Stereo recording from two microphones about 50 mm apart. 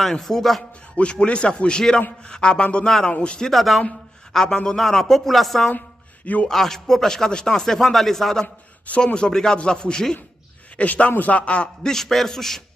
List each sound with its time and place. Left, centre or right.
0.0 s speech: centre
0.9 s a man's voice: left
3.4 s a man's voice: centre
5.7 s a sound: left
6.5 s speech: centre
10.8 s a man's voice: left
11.8 s speech: centre